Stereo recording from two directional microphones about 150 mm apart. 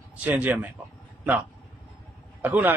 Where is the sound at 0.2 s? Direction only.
10° right (ahead or behind).